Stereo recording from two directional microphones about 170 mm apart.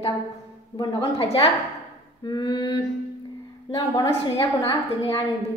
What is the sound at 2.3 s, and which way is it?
Speech, 25° left (ahead or behind).